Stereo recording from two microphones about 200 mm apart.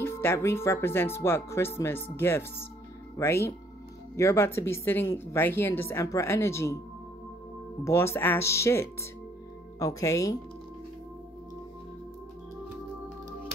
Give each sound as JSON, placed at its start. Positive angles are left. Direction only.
{"t": 0.0, "sound": "speech", "side_deg": 10}
{"t": 7.8, "sound": "speech", "side_deg": 15}